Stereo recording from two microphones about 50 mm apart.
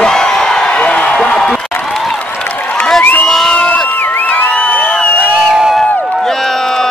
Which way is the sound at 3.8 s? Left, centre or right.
Left.